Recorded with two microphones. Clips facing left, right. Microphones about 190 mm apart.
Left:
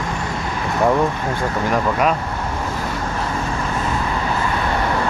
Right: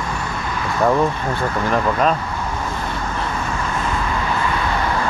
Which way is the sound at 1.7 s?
10° left (ahead or behind).